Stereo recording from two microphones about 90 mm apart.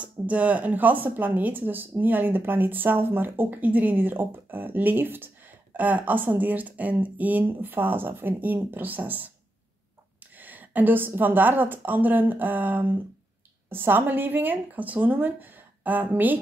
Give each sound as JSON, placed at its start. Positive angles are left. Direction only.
{"t": 0.0, "sound": "speech", "side_deg": -15}
{"t": 10.3, "sound": "speech", "side_deg": -20}